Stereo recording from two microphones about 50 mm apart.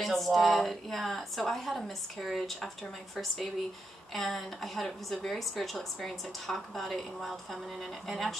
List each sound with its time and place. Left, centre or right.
0.0 s a woman's voice: centre